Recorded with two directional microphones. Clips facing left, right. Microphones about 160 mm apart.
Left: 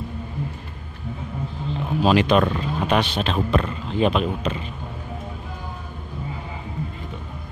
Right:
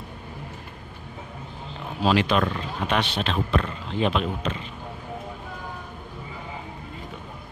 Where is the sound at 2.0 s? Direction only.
15° left (ahead or behind).